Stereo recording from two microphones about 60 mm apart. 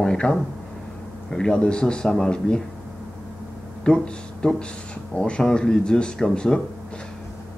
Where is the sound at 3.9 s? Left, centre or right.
Centre.